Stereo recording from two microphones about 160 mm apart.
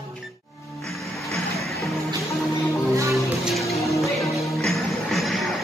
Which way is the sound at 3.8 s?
20° left (ahead or behind).